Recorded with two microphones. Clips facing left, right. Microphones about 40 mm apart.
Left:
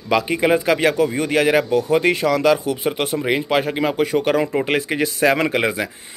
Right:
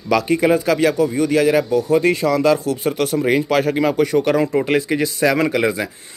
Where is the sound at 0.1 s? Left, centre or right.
Left.